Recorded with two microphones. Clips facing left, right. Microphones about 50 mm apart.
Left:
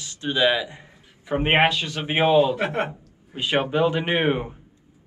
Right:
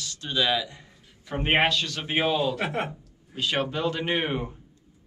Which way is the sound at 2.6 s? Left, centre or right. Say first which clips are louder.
Left 4 dB; centre.